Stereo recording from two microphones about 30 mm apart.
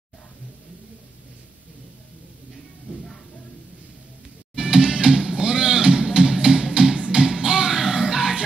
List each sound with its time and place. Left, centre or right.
4.6 s music: right; by 8.4 s centre